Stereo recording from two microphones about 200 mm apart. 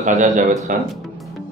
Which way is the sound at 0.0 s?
40° right (ahead or behind).